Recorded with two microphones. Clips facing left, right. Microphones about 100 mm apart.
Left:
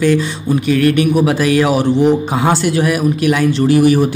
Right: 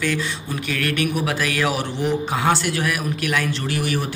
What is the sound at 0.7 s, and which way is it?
A man's voice, 25° left (ahead or behind).